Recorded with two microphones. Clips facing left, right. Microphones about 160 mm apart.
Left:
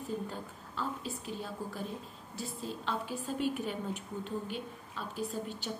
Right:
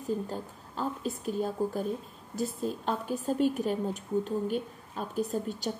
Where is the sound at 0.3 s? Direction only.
45° right (ahead or behind).